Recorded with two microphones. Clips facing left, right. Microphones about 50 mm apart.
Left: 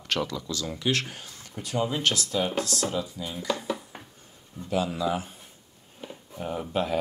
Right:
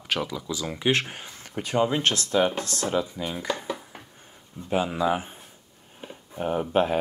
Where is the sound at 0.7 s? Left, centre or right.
Right.